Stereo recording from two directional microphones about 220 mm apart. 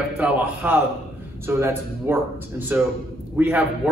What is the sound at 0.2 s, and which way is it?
A man's voice, 5° right (ahead or behind).